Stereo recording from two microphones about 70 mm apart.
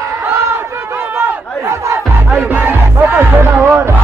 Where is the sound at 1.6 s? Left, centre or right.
Right.